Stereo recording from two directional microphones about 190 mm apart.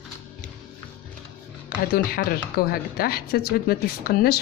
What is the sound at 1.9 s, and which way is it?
Speech, 50° left (ahead or behind).